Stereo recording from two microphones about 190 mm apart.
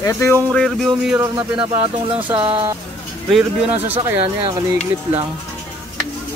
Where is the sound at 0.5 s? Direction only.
5° left (ahead or behind).